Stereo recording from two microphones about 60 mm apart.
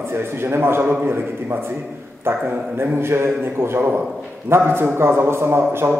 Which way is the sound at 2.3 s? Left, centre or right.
Right.